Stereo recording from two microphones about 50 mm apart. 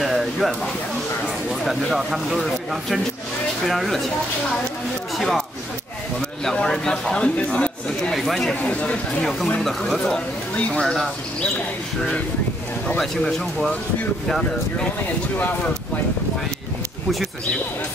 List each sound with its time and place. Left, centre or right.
0.0 s a sound: centre
1.2 s speech: centre
5.1 s speech: centre
6.4 s speech: centre
8.1 s speech: centre
8.6 s speech: left
9.6 s speech: centre
10.5 s speech: left
10.8 s speech: centre
13.0 s speech: centre